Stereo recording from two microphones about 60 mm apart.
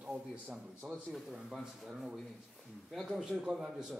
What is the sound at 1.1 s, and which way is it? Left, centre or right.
Speech, centre.